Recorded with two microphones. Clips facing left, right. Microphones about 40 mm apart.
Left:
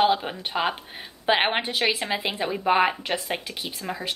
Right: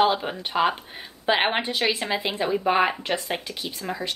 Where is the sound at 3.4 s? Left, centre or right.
Left.